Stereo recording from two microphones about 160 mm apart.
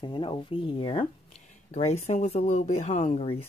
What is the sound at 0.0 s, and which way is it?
Speech, 30° left (ahead or behind).